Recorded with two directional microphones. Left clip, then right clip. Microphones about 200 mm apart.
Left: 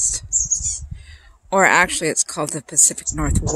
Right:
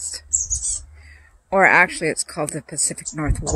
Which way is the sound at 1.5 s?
20° left (ahead or behind).